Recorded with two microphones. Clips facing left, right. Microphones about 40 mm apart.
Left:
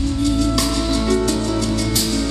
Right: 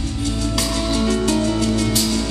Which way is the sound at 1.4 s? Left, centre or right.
Right.